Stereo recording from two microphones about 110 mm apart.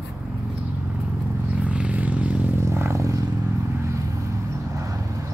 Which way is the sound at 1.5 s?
10° right (ahead or behind).